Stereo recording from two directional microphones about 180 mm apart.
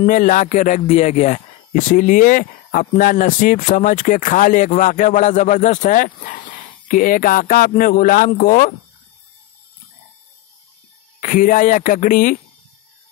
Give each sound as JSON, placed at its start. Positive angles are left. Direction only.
{"t": 0.0, "sound": "a man's voice", "side_deg": 45}
{"t": 11.1, "sound": "a man's voice", "side_deg": 50}